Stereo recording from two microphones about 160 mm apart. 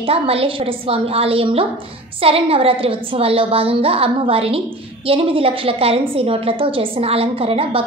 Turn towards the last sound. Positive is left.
turn(degrees=-35)  # may be behind; listen again after turning